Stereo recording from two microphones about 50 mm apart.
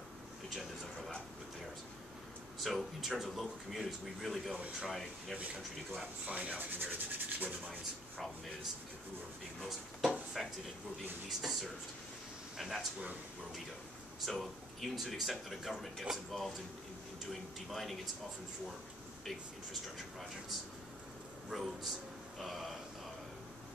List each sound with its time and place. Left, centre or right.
0.5 s a sound: centre
2.6 s speech: centre
6.2 s rub: right
9.6 s speech: centre
14.2 s speech: centre
19.2 s speech: centre
21.5 s speech: centre